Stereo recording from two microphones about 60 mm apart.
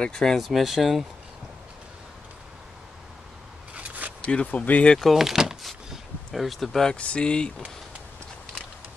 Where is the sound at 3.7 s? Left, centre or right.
Right.